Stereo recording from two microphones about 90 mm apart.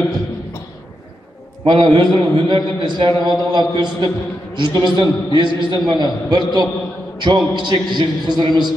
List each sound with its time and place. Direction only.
1.6 s a man's voice: 65° right (ahead or behind)